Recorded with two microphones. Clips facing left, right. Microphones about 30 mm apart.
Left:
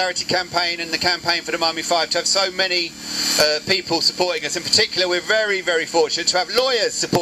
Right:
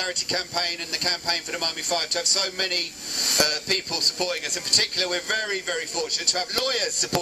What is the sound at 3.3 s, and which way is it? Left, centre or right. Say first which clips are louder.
Speech: left 5 dB; left.